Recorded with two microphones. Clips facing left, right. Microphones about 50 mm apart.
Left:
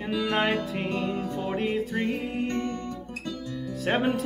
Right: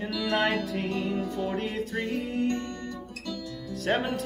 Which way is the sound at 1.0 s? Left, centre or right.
Left.